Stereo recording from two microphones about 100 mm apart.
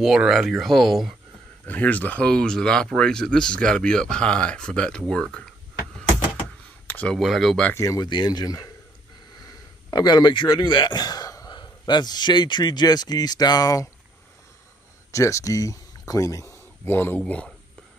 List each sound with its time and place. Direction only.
0.0 s speech: 5° right (ahead or behind)
1.7 s speech: 15° left (ahead or behind)
6.9 s a sound: 15° left (ahead or behind)
7.2 s speech: centre (ahead or behind)
7.7 s speech: 30° left (ahead or behind)
8.1 s a man's voice: 45° left (ahead or behind)
15.0 s speech: 30° left (ahead or behind)
17.2 s speech: 10° left (ahead or behind)